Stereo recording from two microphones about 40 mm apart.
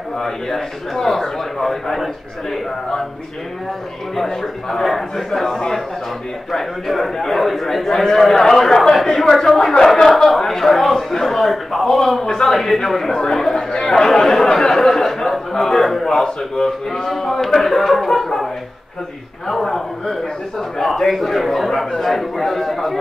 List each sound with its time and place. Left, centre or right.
0.2 s a man's voice: centre
4.1 s a man's voice: centre
13.6 s chatter: centre
14.0 s a sound: centre
16.6 s a man's voice: centre